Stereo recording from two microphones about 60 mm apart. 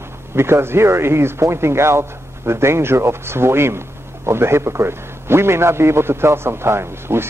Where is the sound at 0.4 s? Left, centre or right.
Right.